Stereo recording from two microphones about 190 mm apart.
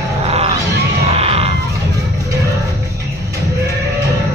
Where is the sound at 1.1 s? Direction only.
30° right (ahead or behind).